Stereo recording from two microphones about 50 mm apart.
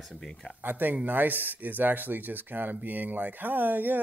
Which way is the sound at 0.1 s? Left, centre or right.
Centre.